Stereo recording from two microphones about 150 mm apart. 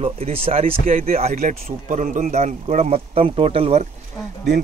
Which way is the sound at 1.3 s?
75° right (ahead or behind).